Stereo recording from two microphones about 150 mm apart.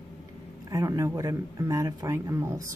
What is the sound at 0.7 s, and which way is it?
Speech, 20° right (ahead or behind).